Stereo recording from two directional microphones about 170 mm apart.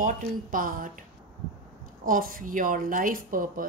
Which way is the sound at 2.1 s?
55° right (ahead or behind).